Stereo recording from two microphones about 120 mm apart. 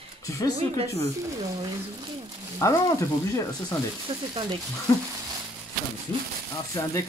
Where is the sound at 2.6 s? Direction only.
30° left (ahead or behind).